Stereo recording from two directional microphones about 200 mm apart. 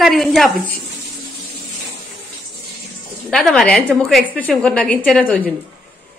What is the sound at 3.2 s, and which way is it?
A woman's voice, centre (ahead or behind).